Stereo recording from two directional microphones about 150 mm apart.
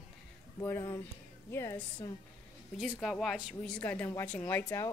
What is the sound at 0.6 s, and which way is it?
Speech, 20° left (ahead or behind).